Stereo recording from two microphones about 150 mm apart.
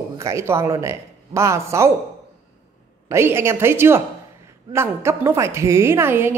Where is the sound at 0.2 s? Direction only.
20° right (ahead or behind).